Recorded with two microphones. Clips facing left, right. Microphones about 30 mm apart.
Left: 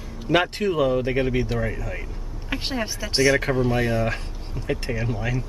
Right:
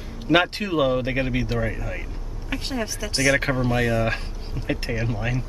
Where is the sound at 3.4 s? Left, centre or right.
Centre.